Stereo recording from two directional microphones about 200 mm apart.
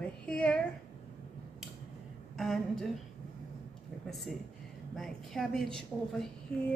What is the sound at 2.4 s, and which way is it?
Speech, centre (ahead or behind).